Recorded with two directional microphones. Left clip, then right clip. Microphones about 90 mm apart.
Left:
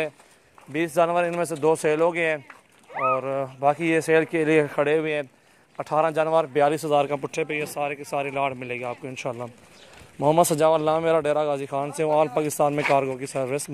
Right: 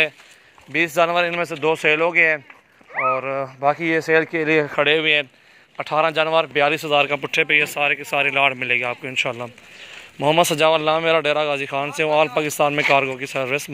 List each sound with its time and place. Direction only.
0.7 s speech: 20° left (ahead or behind)
1.6 s speech: 50° left (ahead or behind)
4.8 s speech: 15° left (ahead or behind)
6.5 s speech: 45° left (ahead or behind)
6.9 s speech: 35° left (ahead or behind)
7.2 s speech: 15° left (ahead or behind)
7.5 s speech: 5° left (ahead or behind)
10.1 s speech: 25° left (ahead or behind)